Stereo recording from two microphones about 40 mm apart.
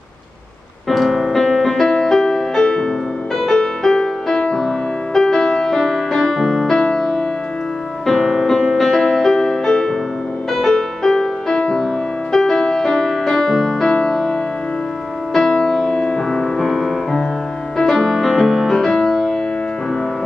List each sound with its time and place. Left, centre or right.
0.8 s music: centre
2.6 s music: left
3.3 s music: centre
4.6 s music: centre
6.8 s music: centre
8.1 s music: centre
13.6 s keyboard: centre
13.8 s music: centre
15.3 s music: centre
16.3 s music: centre
18.1 s music: centre